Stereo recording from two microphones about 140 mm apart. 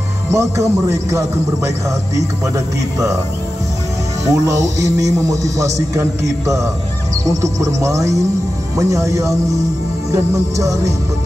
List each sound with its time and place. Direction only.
0.3 s a man's voice: 20° right (ahead or behind)
4.2 s a man's voice: 25° right (ahead or behind)